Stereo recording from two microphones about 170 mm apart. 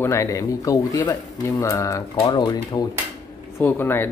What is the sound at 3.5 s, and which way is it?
Speech, 10° left (ahead or behind).